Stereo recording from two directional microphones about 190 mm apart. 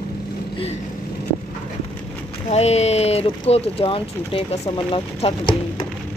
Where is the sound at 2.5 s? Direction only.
35° left (ahead or behind).